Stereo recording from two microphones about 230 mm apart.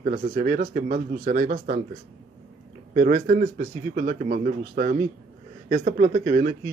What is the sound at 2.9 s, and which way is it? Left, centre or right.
Speech, right.